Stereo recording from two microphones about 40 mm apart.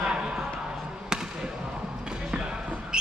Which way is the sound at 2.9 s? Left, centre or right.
Right.